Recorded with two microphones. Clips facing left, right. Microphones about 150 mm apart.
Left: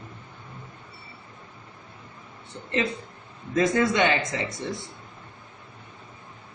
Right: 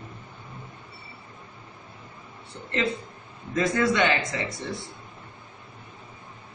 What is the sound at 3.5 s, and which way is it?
A man's voice, 20° left (ahead or behind).